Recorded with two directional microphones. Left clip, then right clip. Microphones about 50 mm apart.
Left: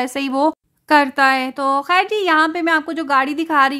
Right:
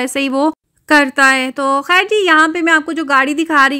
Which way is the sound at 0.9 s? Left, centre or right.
Right.